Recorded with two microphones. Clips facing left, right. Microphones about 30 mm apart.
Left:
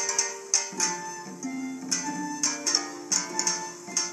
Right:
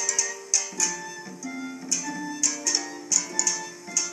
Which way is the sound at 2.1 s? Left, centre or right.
Right.